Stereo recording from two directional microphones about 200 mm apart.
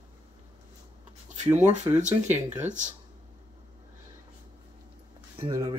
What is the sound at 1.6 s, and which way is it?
Speech, 5° right (ahead or behind).